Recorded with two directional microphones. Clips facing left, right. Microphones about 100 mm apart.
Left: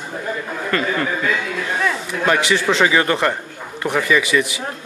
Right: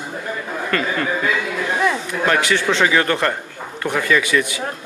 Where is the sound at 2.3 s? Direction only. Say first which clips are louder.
Left 1 dB; centre (ahead or behind).